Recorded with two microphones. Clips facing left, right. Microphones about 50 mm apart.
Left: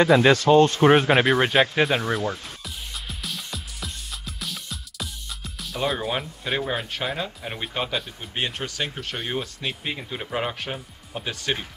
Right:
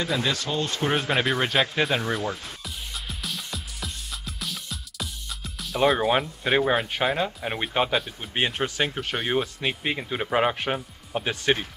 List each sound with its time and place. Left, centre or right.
0.0 s speech: left
0.7 s speech: left
1.1 s music: centre
5.9 s speech: centre
6.5 s speech: centre